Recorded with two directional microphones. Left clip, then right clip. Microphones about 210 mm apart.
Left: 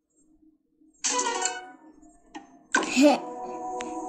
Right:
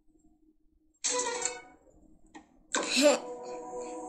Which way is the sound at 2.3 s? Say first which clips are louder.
Left 10 dB; 30° left (ahead or behind).